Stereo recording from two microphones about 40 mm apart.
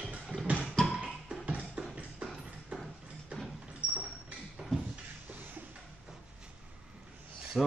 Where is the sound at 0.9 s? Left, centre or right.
Centre.